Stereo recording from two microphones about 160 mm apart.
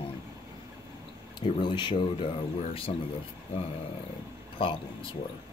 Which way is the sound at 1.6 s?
30° left (ahead or behind).